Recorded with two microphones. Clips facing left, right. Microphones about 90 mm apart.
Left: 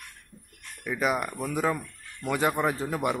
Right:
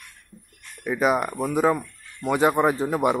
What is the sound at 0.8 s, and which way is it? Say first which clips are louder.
Speech: right 6 dB; 25° right (ahead or behind).